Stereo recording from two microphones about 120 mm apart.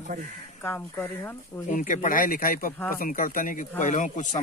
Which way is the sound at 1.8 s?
90° left.